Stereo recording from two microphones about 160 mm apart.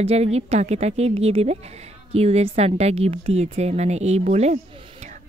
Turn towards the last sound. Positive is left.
turn(degrees=-45)  # may be behind; listen again after turning